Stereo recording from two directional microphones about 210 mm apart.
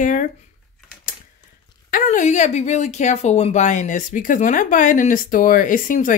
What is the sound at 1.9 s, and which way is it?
Speech, 35° left (ahead or behind).